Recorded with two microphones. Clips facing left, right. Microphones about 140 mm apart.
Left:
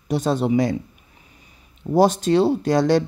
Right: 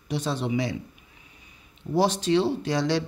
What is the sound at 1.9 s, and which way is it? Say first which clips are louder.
Speech: left 6 dB; 45° left (ahead or behind).